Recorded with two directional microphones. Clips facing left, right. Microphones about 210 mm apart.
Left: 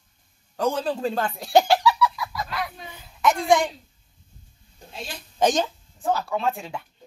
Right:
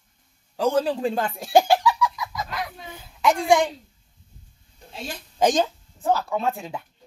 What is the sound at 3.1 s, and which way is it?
Speech, 10° right (ahead or behind).